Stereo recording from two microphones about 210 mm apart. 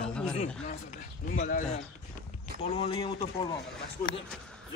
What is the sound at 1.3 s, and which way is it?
Speech, 40° left (ahead or behind).